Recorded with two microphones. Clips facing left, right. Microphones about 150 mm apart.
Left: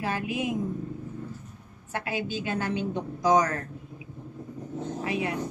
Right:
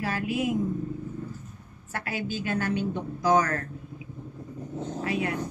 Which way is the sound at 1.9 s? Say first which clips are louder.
Left 1 dB; 20° left (ahead or behind).